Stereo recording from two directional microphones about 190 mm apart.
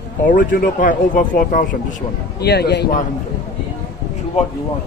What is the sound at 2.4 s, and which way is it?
Speech, 60° left (ahead or behind).